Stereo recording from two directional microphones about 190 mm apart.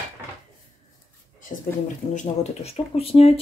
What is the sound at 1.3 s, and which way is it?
Speech, 40° left (ahead or behind).